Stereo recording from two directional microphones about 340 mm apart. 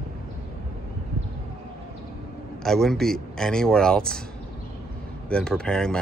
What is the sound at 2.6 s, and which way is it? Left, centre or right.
Speech, centre.